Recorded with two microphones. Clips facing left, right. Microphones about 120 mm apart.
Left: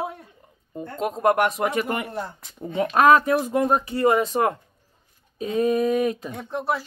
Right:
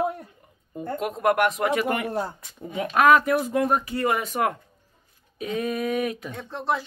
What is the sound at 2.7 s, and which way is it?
Speech, 30° left (ahead or behind).